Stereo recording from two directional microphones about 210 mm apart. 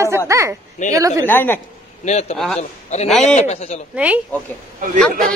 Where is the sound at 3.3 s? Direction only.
30° left (ahead or behind).